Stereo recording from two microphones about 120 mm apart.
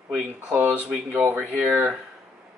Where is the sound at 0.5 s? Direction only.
15° right (ahead or behind).